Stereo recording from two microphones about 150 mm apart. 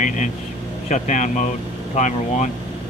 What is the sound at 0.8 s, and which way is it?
Speech, 55° left (ahead or behind).